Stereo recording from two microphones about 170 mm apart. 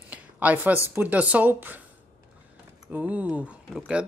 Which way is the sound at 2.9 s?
10° right (ahead or behind).